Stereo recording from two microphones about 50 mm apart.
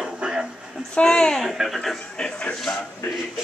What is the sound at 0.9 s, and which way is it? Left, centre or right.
Speech, centre.